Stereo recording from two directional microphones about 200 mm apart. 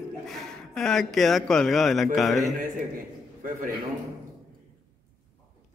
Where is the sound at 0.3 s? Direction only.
Centre (ahead or behind).